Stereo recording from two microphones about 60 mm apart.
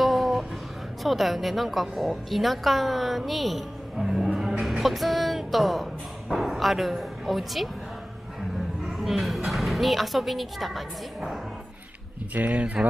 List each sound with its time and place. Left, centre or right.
0.0 s music: centre
1.0 s a woman's voice: centre
8.9 s a woman's voice: centre
12.4 s speech: right